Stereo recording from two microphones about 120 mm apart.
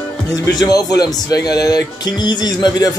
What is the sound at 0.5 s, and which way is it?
Speech, 35° left (ahead or behind).